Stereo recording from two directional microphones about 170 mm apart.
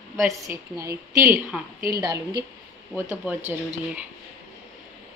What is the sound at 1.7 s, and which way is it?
Speech, 60° right (ahead or behind).